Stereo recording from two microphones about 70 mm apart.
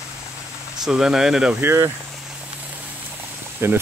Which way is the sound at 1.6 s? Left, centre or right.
Right.